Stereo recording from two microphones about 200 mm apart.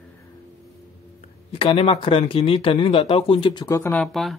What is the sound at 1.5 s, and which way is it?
Speech, 25° left (ahead or behind).